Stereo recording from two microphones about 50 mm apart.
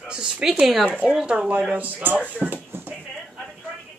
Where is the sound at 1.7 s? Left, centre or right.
Right.